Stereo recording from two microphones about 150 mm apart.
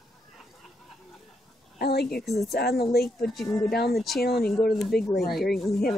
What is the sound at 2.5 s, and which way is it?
Speech, 90° left.